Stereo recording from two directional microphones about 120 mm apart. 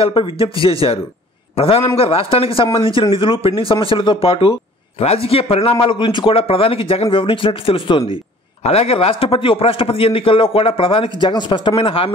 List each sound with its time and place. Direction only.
0.0 s a man's voice: 50° left (ahead or behind)